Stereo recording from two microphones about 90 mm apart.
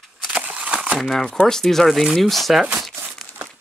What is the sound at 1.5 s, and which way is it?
Speech, 5° left (ahead or behind).